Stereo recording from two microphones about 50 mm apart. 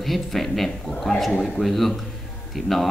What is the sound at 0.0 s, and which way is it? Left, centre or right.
Speech, centre.